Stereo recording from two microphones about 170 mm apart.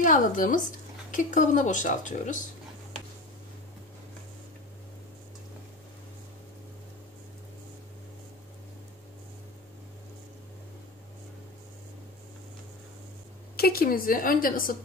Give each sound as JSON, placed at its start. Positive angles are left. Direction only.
{"t": 0.0, "sound": "a woman's voice", "side_deg": 50}
{"t": 13.6, "sound": "a woman's voice", "side_deg": 60}